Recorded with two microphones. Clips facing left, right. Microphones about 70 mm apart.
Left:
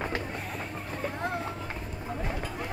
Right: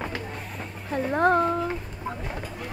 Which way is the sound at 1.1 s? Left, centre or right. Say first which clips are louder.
Right 15 dB; right.